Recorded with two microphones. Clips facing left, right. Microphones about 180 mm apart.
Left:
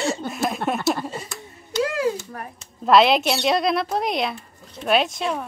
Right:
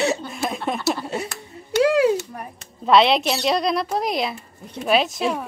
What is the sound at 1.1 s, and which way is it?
Speech, 70° right (ahead or behind).